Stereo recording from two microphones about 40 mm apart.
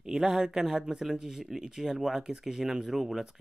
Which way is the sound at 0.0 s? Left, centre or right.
Centre.